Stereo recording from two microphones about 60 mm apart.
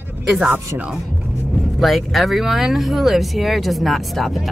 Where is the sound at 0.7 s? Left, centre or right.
Right.